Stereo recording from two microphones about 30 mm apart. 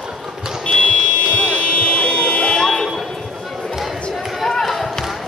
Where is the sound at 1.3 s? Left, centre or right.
Left.